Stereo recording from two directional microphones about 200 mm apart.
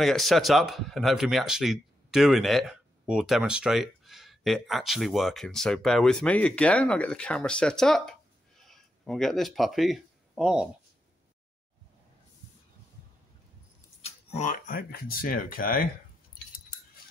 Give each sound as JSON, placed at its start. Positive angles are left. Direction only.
{"t": 0.0, "sound": "speech", "side_deg": 0}
{"t": 14.0, "sound": "speech", "side_deg": 35}